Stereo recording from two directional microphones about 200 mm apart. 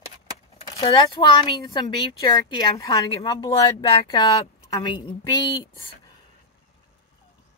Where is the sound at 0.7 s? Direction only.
20° left (ahead or behind).